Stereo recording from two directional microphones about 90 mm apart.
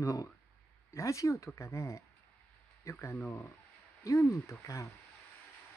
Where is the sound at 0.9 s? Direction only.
35° left (ahead or behind).